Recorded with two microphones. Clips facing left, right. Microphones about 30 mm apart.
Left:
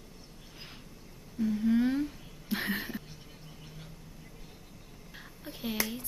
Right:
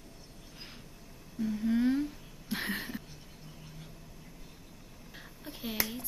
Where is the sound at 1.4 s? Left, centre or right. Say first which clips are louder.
Left 2 dB; centre.